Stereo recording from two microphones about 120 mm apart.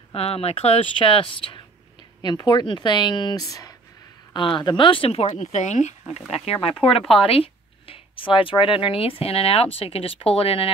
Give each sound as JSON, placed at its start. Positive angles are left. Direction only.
{"t": 0.1, "sound": "speech", "side_deg": 60}
{"t": 4.3, "sound": "speech", "side_deg": 40}
{"t": 6.3, "sound": "speech", "side_deg": 55}